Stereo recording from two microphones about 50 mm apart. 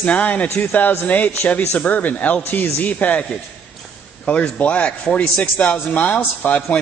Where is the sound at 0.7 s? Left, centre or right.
Left.